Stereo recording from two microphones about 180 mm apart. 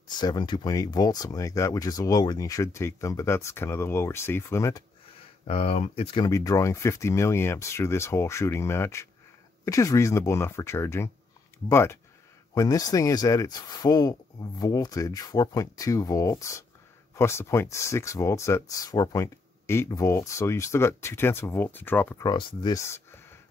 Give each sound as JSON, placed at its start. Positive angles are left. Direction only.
{"t": 0.1, "sound": "speech", "side_deg": 25}
{"t": 5.5, "sound": "speech", "side_deg": 35}
{"t": 6.2, "sound": "speech", "side_deg": 20}